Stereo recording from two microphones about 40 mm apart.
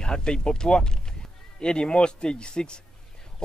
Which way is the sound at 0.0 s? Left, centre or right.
Left.